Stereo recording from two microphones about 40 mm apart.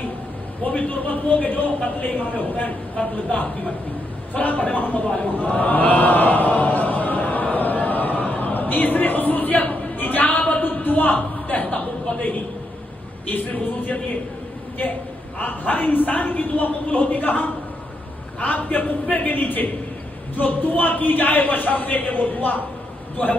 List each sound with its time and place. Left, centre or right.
0.7 s a man's voice: left
5.2 s chant: left
13.3 s a man's voice: left
15.3 s a man's voice: left